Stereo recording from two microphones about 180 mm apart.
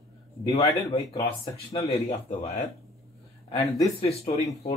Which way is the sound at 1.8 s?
35° left (ahead or behind).